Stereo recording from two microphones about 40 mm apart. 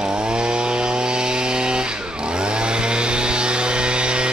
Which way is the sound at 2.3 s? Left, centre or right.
Right.